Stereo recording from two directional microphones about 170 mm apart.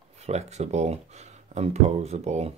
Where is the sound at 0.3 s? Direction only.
40° right (ahead or behind).